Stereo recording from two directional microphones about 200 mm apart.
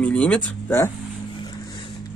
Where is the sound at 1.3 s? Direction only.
20° left (ahead or behind).